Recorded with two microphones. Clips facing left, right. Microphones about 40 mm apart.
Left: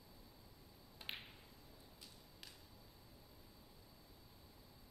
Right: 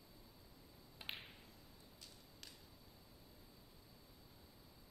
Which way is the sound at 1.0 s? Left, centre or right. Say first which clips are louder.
Even; centre.